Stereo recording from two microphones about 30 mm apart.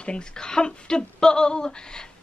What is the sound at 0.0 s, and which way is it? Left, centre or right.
Speech, left.